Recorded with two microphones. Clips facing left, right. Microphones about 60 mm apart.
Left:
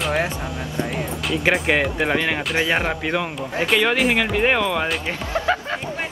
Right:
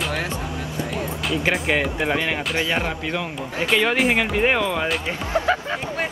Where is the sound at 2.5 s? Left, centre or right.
Left.